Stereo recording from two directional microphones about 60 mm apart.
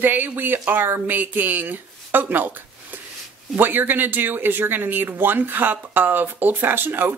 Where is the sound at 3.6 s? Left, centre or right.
Right.